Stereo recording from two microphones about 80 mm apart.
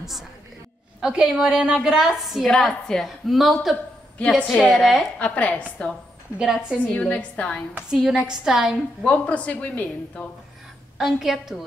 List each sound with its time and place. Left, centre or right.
1.0 s a woman's voice: centre
5.2 s a woman's voice: centre
6.3 s a woman's voice: centre
6.9 s a woman's voice: centre
7.9 s a woman's voice: centre
9.0 s a woman's voice: centre
11.0 s a woman's voice: centre